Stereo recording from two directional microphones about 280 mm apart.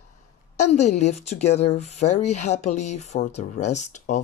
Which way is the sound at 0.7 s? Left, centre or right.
Left.